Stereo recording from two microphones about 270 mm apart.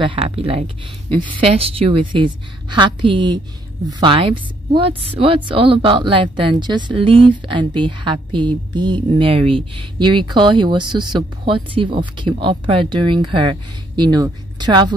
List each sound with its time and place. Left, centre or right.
0.0 s a woman's voice: centre